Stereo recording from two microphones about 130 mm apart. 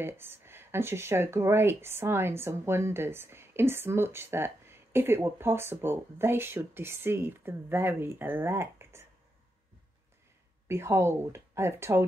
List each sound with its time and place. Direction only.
0.0 s speech: 15° right (ahead or behind)
10.7 s speech: 20° right (ahead or behind)